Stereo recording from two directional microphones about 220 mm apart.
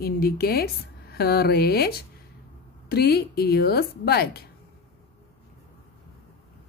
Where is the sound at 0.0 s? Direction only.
45° left (ahead or behind).